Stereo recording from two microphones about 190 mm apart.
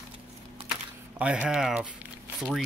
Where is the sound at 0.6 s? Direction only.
30° right (ahead or behind).